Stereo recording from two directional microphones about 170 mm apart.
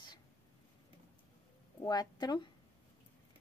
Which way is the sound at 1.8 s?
25° left (ahead or behind).